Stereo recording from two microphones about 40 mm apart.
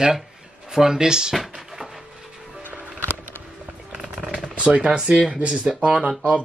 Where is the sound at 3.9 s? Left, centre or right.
Right.